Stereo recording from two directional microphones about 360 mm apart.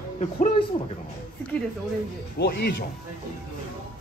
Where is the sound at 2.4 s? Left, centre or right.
Left.